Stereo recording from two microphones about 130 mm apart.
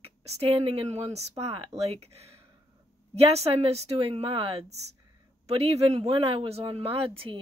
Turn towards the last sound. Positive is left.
turn(degrees=-45)  # may be behind; listen again after turning